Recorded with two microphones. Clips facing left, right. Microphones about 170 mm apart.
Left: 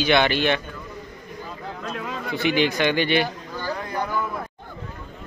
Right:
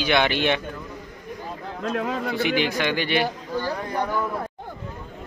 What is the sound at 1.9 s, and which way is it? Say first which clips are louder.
Speech: right 5 dB; 50° right (ahead or behind).